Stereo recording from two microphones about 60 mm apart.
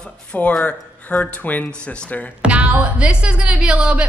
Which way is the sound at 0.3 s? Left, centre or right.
Left.